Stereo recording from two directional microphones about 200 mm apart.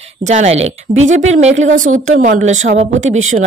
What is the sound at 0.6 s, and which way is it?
Speech, 75° right (ahead or behind).